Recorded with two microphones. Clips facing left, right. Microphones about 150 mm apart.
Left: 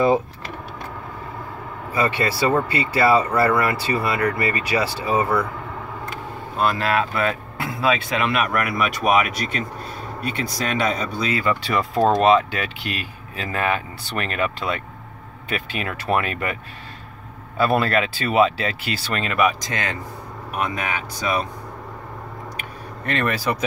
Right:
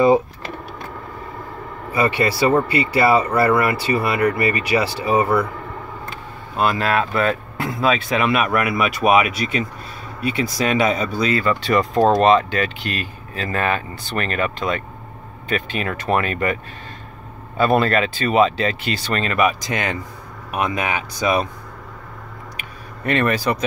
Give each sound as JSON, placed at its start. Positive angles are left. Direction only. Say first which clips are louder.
{"t": 1.9, "sound": "speech", "louder": "right 3 dB", "side_deg": -10}
{"t": 6.6, "sound": "speech", "louder": "right 2 dB", "side_deg": 0}
{"t": 11.3, "sound": "speech", "louder": "right 3 dB", "side_deg": 10}
{"t": 17.6, "sound": "speech", "louder": "right 2 dB", "side_deg": 5}
{"t": 19.7, "sound": "speech", "louder": "right 3 dB", "side_deg": -15}
{"t": 22.6, "sound": "a sound", "louder": "left 1 dB", "side_deg": -5}